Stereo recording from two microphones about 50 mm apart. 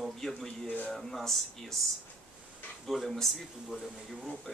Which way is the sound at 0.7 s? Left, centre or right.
Left.